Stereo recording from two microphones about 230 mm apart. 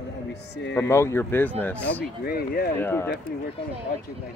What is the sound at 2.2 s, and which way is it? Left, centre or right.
Speech, left.